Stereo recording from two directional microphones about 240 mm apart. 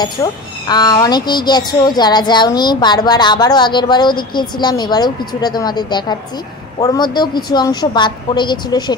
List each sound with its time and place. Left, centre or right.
0.0 s a child's voice: centre